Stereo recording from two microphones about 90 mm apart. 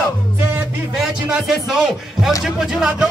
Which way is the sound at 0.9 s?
5° right (ahead or behind).